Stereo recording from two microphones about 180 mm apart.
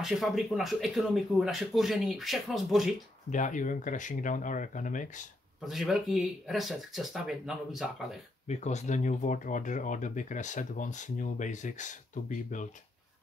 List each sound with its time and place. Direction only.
0.0 s speech: centre (ahead or behind)
3.3 s speech: 45° left (ahead or behind)
5.6 s speech: centre (ahead or behind)
8.5 s speech: 40° left (ahead or behind)